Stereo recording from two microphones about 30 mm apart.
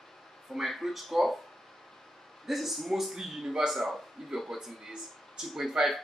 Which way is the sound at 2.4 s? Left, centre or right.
Centre.